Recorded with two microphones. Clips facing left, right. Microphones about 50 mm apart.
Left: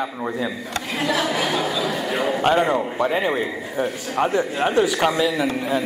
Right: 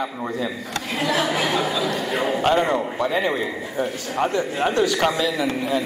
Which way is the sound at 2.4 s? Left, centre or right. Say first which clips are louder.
Left 2 dB; centre.